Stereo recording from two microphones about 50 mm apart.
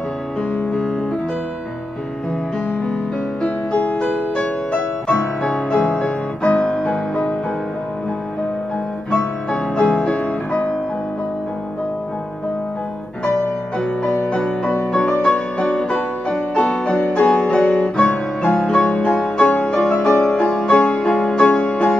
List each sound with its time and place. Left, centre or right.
0.6 s music: centre
3.4 s music: left
9.5 s music: left
14.9 s music: centre
16.5 s piano: centre
19.9 s music: left
20.2 s music: centre